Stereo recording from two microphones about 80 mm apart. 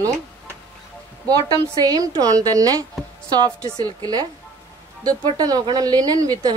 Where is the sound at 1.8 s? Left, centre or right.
Right.